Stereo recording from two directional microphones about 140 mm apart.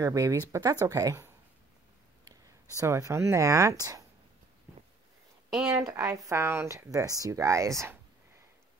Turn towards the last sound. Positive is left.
turn(degrees=-20)  # may be behind; listen again after turning